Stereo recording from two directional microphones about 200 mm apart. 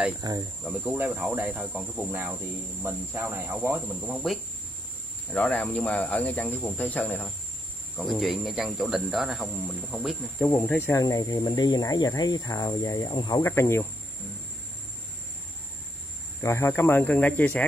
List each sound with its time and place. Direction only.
0.2 s speech: 15° right (ahead or behind)
4.0 s speech: centre (ahead or behind)
10.4 s speech: 10° left (ahead or behind)
16.3 s speech: 15° left (ahead or behind)